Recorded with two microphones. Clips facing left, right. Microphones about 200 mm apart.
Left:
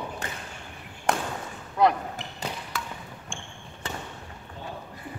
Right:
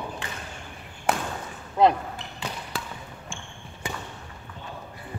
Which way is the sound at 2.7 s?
30° right (ahead or behind).